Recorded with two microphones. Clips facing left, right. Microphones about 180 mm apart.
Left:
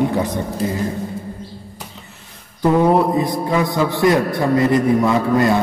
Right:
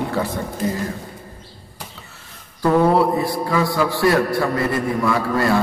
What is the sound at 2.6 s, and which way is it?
A man's voice, 20° left (ahead or behind).